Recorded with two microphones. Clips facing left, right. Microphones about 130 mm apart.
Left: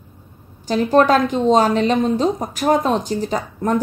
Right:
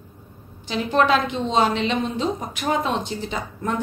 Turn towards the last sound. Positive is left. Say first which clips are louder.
# left 6 dB
turn(degrees=40)  # may be behind; listen again after turning